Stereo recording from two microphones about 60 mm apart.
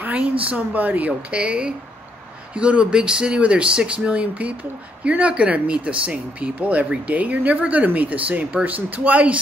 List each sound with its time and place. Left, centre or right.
0.0 s speech: right